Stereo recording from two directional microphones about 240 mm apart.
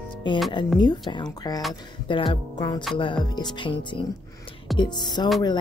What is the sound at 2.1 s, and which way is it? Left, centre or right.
Music, left.